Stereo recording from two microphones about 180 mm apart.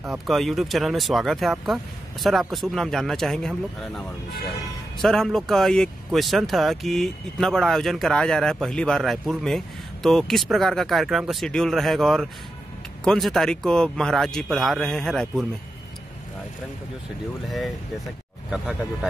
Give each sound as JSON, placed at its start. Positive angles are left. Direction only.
{"t": 0.3, "sound": "speech", "side_deg": 0}
{"t": 5.0, "sound": "speech", "side_deg": 0}
{"t": 17.5, "sound": "speech", "side_deg": 0}